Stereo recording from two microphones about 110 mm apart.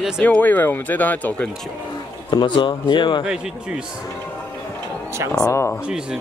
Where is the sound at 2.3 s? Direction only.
45° left (ahead or behind).